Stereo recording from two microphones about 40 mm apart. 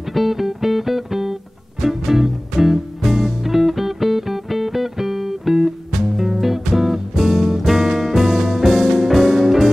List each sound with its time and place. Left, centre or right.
0.1 s music: centre